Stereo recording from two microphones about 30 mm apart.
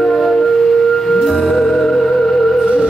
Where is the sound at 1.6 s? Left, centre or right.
Left.